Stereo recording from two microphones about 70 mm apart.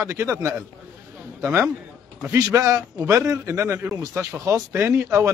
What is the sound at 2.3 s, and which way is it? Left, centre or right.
A man's voice, right.